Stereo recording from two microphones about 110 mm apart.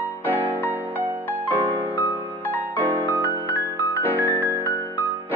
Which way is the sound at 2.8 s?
15° right (ahead or behind).